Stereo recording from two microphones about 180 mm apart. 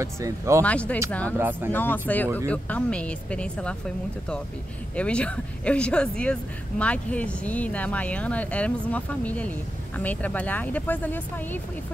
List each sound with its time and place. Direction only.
0.0 s speech: 15° right (ahead or behind)
0.7 s speech: 5° left (ahead or behind)
1.4 s speech: 10° right (ahead or behind)
1.7 s speech: 10° left (ahead or behind)
4.9 s speech: 5° left (ahead or behind)